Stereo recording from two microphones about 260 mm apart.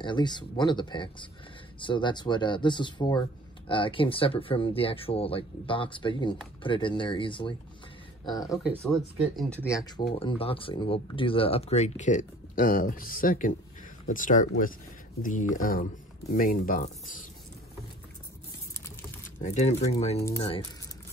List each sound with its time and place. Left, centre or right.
0.0 s speech: centre
19.4 s speech: left